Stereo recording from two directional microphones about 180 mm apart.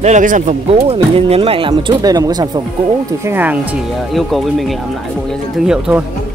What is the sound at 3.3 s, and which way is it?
Speech, 10° right (ahead or behind).